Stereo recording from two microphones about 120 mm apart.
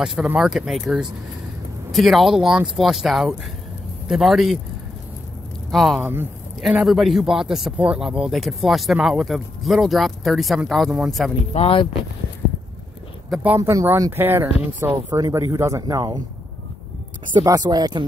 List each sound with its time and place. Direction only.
0.0 s speech: 5° right (ahead or behind)
5.7 s speech: centre (ahead or behind)
11.5 s speech: 50° left (ahead or behind)
13.6 s speech: 25° right (ahead or behind)
15.0 s speech: 35° right (ahead or behind)
17.4 s speech: 35° right (ahead or behind)